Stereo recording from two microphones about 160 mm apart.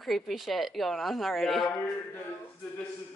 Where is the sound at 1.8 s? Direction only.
10° left (ahead or behind).